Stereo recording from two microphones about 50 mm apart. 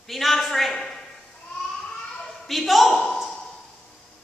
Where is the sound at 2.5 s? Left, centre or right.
Centre.